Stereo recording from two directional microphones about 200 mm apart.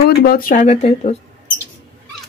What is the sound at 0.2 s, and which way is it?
Speech, 45° left (ahead or behind).